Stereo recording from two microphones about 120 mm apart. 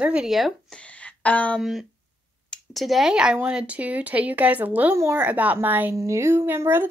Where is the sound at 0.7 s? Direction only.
10° left (ahead or behind).